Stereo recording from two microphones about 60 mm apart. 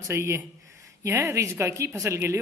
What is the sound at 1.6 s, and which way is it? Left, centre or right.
Speech, right.